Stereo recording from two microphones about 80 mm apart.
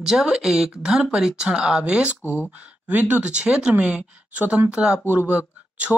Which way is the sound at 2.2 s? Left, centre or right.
Left.